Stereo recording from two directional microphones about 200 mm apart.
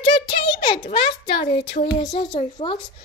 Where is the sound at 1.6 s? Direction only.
40° left (ahead or behind).